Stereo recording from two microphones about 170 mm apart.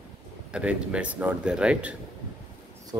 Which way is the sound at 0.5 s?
5° right (ahead or behind).